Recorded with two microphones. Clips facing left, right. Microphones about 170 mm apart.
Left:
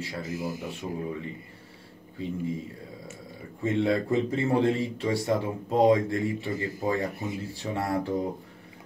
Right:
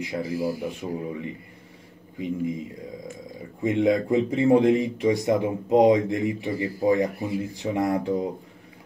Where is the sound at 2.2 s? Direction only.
15° right (ahead or behind).